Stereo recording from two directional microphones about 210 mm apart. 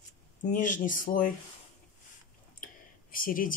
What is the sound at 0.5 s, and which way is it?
Speech, 40° left (ahead or behind).